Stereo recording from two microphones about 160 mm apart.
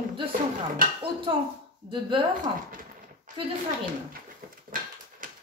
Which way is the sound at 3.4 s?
30° right (ahead or behind).